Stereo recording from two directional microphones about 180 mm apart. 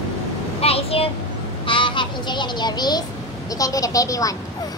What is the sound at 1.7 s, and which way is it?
Speech, 25° left (ahead or behind).